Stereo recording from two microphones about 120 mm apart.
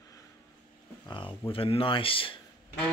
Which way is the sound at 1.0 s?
40° left (ahead or behind).